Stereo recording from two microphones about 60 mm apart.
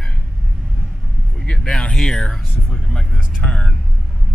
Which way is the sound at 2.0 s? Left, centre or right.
Centre.